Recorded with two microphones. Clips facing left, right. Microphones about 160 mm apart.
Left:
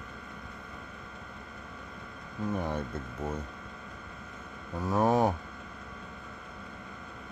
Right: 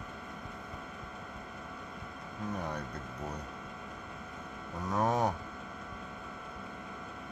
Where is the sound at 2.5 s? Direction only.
25° left (ahead or behind).